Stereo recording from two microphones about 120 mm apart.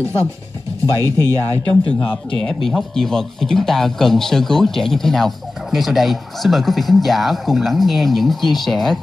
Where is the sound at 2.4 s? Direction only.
5° left (ahead or behind).